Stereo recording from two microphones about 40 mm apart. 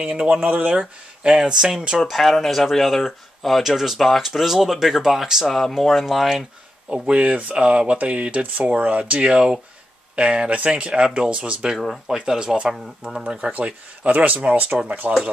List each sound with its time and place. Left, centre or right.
0.0 s speech: right
0.5 s speech: right
0.7 s speech: right
2.0 s speech: centre
5.5 s speech: centre
6.9 s speech: right
8.0 s speech: right
12.1 s speech: centre
13.4 s speech: right
15.1 s speech: centre